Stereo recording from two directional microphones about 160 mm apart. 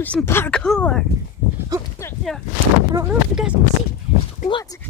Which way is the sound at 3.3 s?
5° right (ahead or behind).